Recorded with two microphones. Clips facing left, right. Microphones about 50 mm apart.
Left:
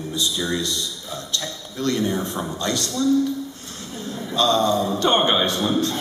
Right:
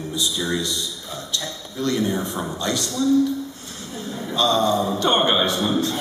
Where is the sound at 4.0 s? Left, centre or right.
Centre.